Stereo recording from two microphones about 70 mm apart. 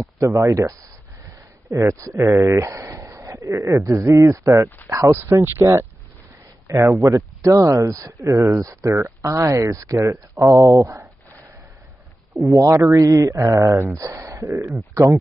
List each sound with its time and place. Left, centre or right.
0.0 s speech: right
5.1 s speech: right
6.7 s speech: right
8.2 s speech: right
12.4 s speech: right
13.9 s speech: right